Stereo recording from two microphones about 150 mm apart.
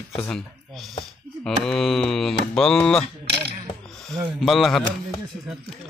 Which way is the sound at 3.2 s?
90° right.